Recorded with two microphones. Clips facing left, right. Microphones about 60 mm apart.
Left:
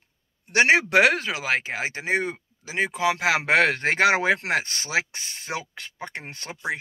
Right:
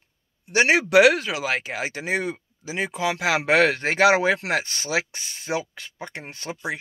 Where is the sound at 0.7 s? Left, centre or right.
Left.